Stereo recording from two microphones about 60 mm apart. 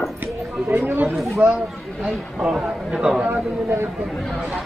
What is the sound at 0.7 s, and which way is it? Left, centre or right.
Chatter, right.